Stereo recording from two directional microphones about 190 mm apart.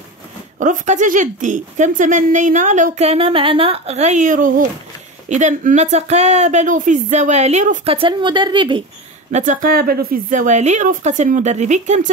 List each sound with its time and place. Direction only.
0.6 s a woman's voice: 40° right (ahead or behind)
7.9 s a woman's voice: 25° right (ahead or behind)
9.3 s a woman's voice: 40° right (ahead or behind)